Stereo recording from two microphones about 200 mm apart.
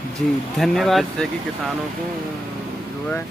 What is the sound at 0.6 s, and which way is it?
Speech, centre (ahead or behind).